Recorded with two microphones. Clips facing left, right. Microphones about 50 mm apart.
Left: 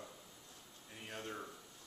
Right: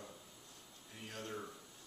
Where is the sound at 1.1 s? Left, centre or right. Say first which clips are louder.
Even; centre.